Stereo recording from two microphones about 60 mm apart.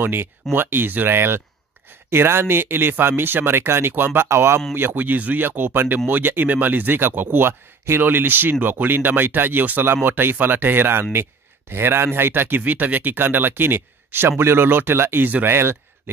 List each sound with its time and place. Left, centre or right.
0.0 s speech: right